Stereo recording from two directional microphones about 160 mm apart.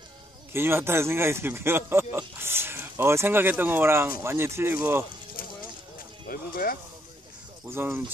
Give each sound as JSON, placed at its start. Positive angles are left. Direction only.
{"t": 0.5, "sound": "speech", "side_deg": -15}
{"t": 6.2, "sound": "speech", "side_deg": 65}
{"t": 7.6, "sound": "speech", "side_deg": -15}